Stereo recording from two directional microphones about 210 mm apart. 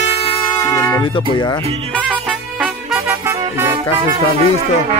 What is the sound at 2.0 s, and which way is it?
Music, 5° right (ahead or behind).